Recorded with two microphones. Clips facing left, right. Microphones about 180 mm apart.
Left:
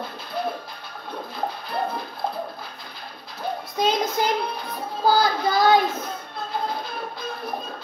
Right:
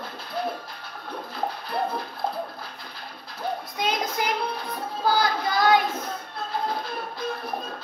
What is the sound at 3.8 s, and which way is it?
Child singing, 30° left (ahead or behind).